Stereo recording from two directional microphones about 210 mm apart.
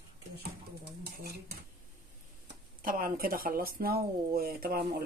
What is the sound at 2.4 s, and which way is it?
Speech, 40° right (ahead or behind).